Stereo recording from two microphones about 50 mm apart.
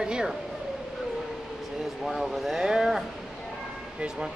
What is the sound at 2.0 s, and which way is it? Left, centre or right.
Speech, centre.